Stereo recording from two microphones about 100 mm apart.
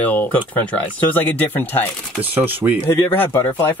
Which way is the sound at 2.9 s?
20° left (ahead or behind).